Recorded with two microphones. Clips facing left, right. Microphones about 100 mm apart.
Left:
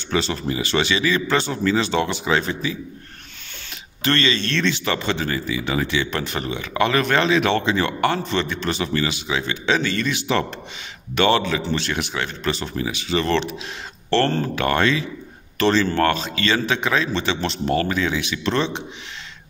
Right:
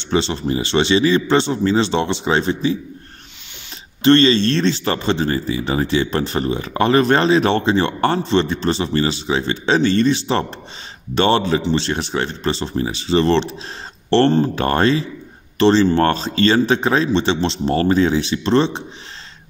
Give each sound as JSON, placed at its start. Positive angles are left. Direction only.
{"t": 0.0, "sound": "a man's voice", "side_deg": -25}
{"t": 4.0, "sound": "speech", "side_deg": -30}